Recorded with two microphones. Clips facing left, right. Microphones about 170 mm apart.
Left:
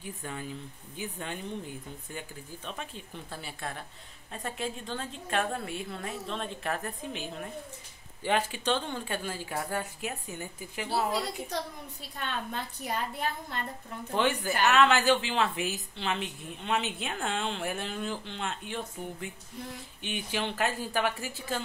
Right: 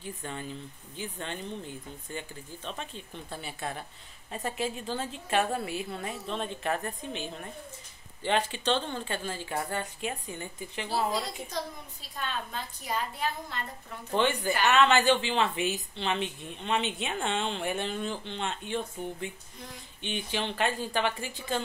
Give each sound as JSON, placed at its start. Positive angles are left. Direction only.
{"t": 0.0, "sound": "speech", "side_deg": 5}
{"t": 11.5, "sound": "a woman's voice", "side_deg": 70}
{"t": 12.8, "sound": "a woman's voice", "side_deg": 50}
{"t": 14.1, "sound": "speech", "side_deg": 5}
{"t": 20.0, "sound": "speech", "side_deg": 5}